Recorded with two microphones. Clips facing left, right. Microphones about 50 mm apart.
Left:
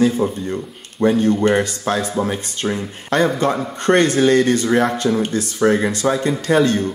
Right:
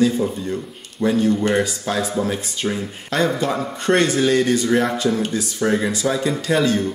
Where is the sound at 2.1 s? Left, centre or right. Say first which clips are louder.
Left 1 dB; left.